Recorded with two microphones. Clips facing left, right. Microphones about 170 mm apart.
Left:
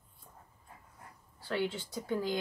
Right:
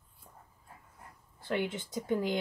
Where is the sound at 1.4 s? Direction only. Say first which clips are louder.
Right 1 dB; 20° right (ahead or behind).